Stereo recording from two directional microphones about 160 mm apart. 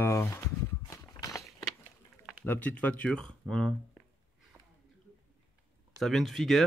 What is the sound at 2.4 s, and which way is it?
Speech, 10° left (ahead or behind).